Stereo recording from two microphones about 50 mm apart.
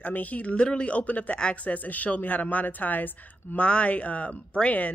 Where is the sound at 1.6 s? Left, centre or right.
Left.